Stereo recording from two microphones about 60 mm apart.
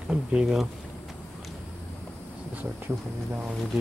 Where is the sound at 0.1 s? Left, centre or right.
Centre.